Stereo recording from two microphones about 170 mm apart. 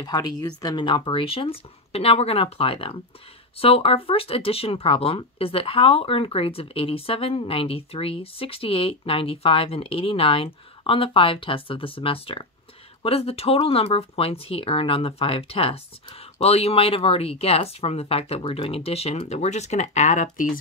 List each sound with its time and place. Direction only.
0.0 s speech: 20° left (ahead or behind); by 20.5 s 50° left (ahead or behind)